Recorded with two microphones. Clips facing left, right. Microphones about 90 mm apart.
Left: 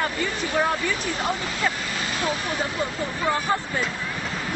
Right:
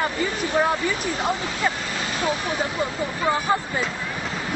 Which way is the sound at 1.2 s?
5° right (ahead or behind).